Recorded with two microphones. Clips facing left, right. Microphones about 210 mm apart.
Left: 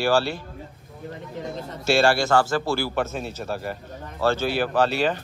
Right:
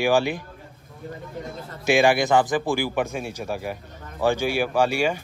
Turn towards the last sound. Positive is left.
turn(degrees=-10)  # may be behind; listen again after turning